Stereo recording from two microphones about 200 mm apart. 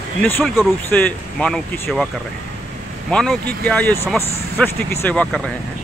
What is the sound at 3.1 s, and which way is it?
Speech, 5° left (ahead or behind).